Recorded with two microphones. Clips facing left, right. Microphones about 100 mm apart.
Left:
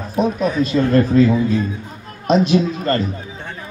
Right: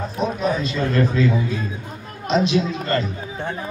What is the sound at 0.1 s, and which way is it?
A man's voice, 45° left (ahead or behind).